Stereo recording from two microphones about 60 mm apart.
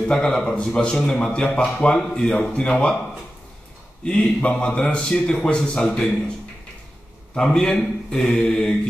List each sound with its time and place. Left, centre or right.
0.1 s a man's voice: centre
4.0 s a man's voice: centre
7.3 s a man's voice: centre